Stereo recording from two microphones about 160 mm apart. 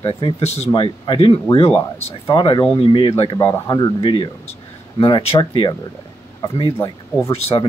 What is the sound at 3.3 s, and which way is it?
Speech, 25° left (ahead or behind).